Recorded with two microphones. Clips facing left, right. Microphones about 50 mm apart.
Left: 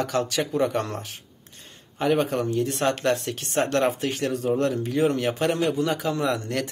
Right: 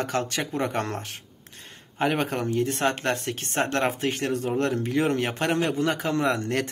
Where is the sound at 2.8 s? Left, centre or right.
Right.